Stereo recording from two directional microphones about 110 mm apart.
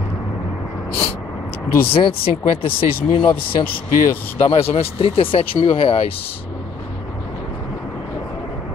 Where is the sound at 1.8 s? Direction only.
55° left (ahead or behind).